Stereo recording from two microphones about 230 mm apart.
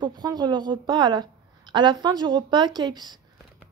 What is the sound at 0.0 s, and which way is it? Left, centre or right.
A woman's voice, centre.